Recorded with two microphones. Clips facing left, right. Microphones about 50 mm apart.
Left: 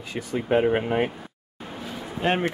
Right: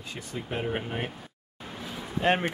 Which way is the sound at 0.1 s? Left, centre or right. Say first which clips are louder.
Left 12 dB; left.